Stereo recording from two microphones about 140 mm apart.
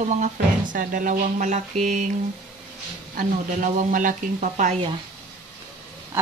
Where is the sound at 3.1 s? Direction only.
65° right (ahead or behind).